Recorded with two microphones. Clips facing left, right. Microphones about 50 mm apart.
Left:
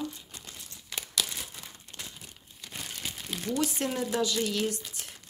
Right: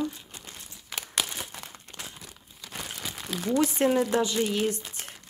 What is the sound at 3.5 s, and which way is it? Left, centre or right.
Speech, right.